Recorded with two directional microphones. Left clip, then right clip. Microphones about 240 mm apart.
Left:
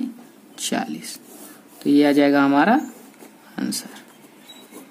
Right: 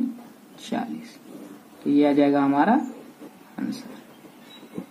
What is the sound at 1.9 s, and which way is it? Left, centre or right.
Speech, left.